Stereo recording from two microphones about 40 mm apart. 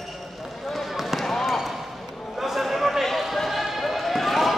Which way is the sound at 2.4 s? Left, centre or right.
Centre.